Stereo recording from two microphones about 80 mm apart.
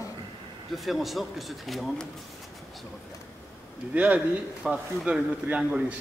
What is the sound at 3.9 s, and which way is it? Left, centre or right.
A man's voice, centre.